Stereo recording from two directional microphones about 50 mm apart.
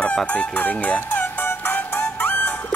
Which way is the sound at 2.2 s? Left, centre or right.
Left.